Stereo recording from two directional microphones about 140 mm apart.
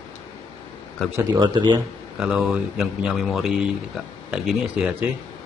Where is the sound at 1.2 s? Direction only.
30° right (ahead or behind).